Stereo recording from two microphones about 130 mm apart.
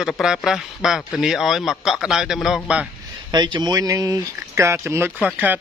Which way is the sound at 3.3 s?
35° right (ahead or behind).